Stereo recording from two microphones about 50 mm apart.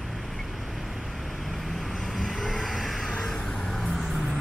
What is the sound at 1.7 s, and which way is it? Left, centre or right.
Vehicle, centre.